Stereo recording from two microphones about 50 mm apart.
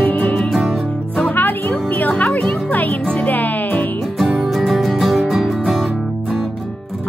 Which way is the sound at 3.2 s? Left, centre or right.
Left.